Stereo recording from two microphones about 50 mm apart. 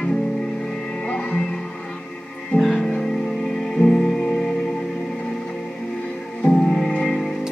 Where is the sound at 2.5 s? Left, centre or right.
Centre.